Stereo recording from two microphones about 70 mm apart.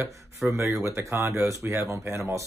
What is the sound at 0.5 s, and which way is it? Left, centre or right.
Speech, right.